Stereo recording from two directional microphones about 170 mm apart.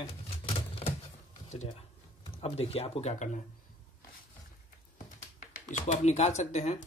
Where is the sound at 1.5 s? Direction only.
40° left (ahead or behind).